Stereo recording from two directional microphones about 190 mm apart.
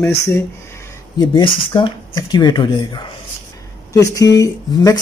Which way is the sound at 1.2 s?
25° left (ahead or behind).